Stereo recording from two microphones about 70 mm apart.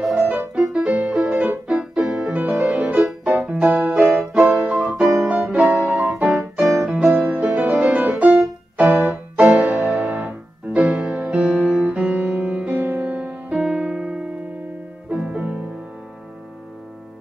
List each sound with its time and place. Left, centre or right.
0.0 s music: centre
0.6 s music: centre
2.4 s music: right
4.3 s keyboard: centre
5.2 s music: right
5.9 s keyboard: right
6.9 s music: centre
7.3 s music: right
13.7 s piano: centre
15.1 s music: centre